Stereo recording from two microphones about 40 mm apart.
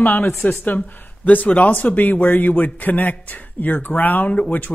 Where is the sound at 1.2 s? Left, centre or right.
Left.